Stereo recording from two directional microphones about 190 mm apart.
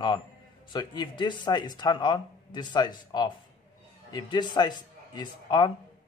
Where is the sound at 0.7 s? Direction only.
25° left (ahead or behind).